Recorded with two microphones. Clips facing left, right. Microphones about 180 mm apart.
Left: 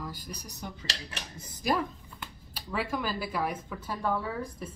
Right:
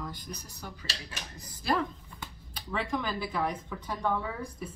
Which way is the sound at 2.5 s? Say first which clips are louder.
Even; 5° left (ahead or behind).